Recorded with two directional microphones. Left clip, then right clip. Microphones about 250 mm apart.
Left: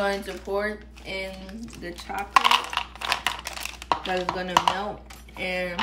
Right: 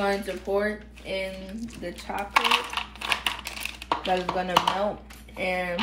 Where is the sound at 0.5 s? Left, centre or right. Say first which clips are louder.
Right 2 dB; centre.